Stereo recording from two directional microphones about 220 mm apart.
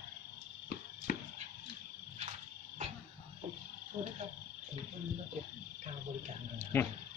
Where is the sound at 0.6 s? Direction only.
40° left (ahead or behind).